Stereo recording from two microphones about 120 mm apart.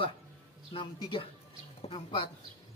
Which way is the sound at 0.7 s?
45° left (ahead or behind).